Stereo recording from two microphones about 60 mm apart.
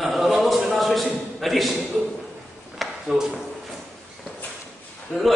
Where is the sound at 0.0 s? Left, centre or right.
Centre.